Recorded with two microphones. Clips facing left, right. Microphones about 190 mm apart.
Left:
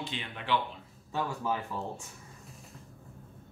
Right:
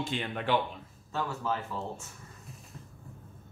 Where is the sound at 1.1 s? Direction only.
15° left (ahead or behind).